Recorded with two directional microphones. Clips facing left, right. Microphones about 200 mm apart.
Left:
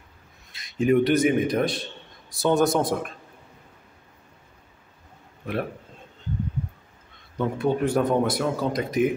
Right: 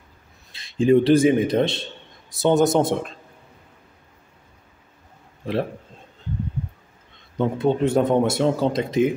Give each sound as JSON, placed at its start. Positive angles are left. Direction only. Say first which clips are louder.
{"t": 0.5, "sound": "speech", "louder": "right 4 dB", "side_deg": -30}
{"t": 7.3, "sound": "speech", "louder": "right 3 dB", "side_deg": -20}